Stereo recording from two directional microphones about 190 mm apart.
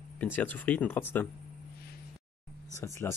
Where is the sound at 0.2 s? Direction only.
10° left (ahead or behind).